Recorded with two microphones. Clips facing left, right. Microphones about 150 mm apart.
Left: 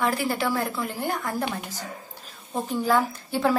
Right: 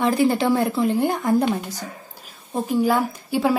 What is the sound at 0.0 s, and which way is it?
A woman's voice, 20° right (ahead or behind).